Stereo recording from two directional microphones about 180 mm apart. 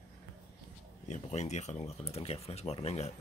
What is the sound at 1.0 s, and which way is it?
Speech, 40° left (ahead or behind).